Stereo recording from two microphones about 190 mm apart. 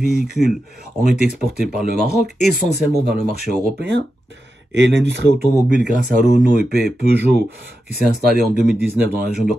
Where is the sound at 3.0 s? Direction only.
55° right (ahead or behind).